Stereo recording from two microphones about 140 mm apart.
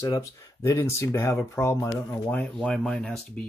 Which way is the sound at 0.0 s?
25° left (ahead or behind).